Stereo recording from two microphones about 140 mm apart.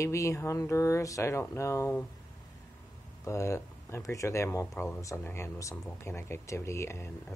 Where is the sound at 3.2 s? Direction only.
20° left (ahead or behind).